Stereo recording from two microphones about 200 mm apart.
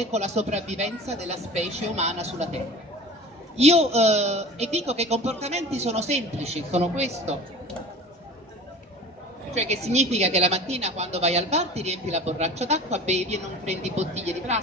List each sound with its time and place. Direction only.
0.0 s a woman's voice: 35° right (ahead or behind)
9.5 s a woman's voice: 35° right (ahead or behind)